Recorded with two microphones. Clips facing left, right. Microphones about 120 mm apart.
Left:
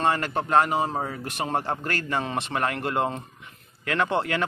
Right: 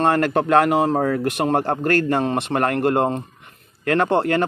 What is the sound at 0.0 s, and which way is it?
A man's voice, 60° right (ahead or behind).